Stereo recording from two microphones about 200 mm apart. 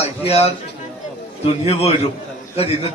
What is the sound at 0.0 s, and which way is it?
A man's voice, 30° left (ahead or behind).